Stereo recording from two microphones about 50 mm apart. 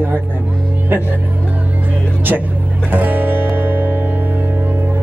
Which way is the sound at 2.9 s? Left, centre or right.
Right.